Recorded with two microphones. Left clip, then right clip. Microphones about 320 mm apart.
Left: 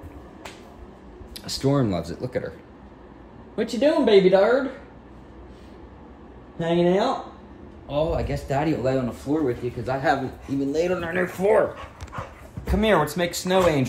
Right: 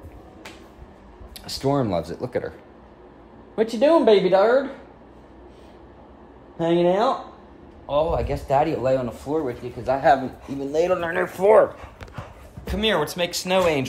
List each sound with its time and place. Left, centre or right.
1.3 s a man's voice: centre; by 2.5 s right
3.5 s speech: right
6.6 s a man's voice: right
12.7 s speech: centre